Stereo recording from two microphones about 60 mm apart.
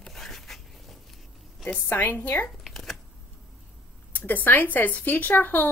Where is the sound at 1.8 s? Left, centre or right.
Left.